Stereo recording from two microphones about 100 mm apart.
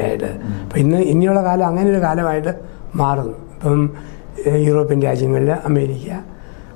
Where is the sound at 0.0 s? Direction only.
20° left (ahead or behind).